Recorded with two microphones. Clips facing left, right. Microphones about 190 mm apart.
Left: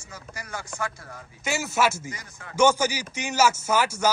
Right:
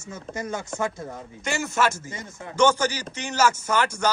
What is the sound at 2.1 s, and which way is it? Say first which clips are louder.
Chopping: right 3 dB; 25° right (ahead or behind).